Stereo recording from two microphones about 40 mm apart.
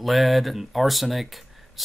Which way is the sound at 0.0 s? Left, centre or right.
Centre.